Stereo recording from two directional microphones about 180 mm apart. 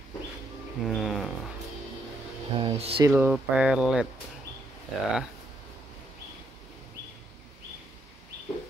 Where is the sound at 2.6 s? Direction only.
30° right (ahead or behind).